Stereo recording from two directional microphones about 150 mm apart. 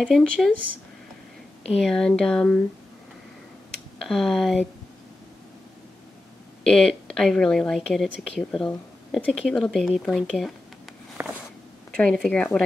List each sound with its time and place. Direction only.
0.0 s speech: centre (ahead or behind)
1.8 s speech: 5° left (ahead or behind)
3.7 s speech: centre (ahead or behind)
6.6 s speech: 5° left (ahead or behind)
11.2 s walk: 15° right (ahead or behind)
12.0 s speech: 5° left (ahead or behind)